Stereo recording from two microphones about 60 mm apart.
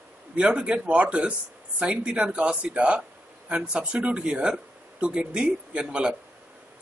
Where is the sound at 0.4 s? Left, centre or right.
Centre.